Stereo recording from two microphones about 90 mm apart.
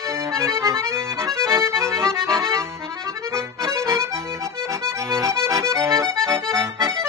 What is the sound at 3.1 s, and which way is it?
Accordion, 35° right (ahead or behind).